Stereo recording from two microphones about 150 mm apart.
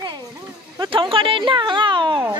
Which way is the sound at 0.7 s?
35° right (ahead or behind).